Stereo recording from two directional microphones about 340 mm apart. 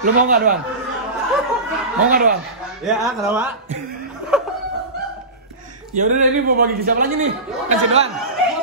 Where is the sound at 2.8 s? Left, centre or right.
Centre.